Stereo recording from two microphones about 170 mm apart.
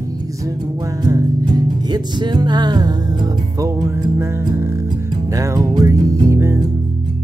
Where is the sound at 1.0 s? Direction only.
20° right (ahead or behind).